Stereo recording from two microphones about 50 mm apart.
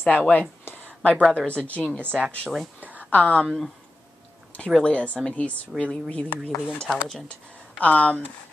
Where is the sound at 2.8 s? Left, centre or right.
Right.